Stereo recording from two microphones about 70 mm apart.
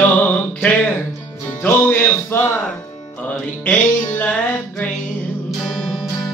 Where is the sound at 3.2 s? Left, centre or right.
Left.